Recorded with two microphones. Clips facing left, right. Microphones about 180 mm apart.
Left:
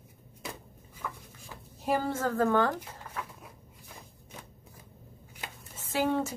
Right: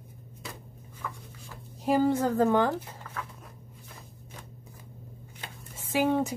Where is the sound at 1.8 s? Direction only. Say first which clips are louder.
Right 5 dB; 15° right (ahead or behind).